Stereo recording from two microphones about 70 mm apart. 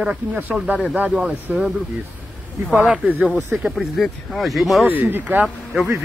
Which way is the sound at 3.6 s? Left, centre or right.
Centre.